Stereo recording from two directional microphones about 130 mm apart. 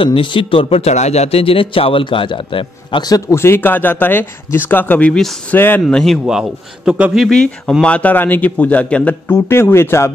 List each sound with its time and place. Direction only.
0.0 s a man's voice: 40° left (ahead or behind); by 6.1 s 5° left (ahead or behind)
6.2 s a man's voice: 5° right (ahead or behind)
7.2 s a man's voice: 5° left (ahead or behind)